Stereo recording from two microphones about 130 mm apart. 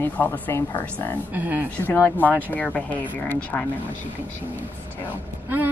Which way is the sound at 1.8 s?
15° left (ahead or behind).